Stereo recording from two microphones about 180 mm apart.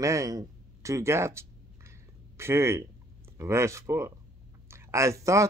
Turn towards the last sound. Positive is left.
turn(degrees=-15)  # may be behind; listen again after turning